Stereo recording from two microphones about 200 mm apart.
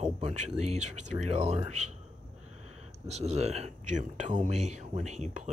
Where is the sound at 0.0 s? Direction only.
35° right (ahead or behind).